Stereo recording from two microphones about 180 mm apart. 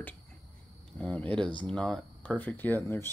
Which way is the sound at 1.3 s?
25° right (ahead or behind).